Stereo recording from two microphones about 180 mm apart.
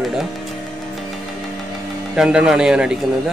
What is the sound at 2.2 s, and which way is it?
Speech, 5° right (ahead or behind).